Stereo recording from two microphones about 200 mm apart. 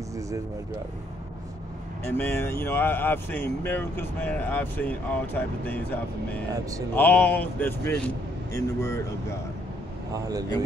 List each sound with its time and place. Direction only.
2.0 s speech: 10° left (ahead or behind)
10.1 s speech: 20° right (ahead or behind)